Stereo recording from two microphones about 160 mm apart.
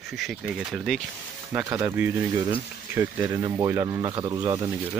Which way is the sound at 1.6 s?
20° right (ahead or behind).